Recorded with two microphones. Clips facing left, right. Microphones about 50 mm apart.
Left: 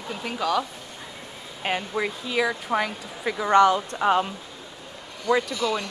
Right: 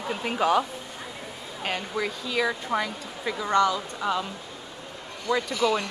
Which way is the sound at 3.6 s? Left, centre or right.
Left.